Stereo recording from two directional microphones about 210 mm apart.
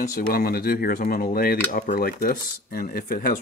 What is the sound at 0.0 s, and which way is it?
Speech, 40° left (ahead or behind).